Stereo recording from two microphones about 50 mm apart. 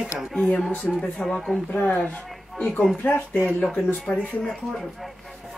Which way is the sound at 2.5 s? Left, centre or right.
Left.